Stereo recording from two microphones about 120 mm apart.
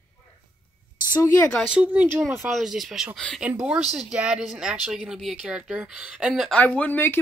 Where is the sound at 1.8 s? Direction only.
10° right (ahead or behind).